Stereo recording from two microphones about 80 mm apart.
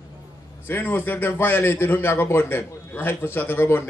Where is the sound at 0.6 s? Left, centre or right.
Left.